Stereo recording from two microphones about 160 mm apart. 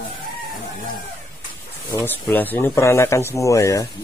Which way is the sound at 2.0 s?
10° left (ahead or behind).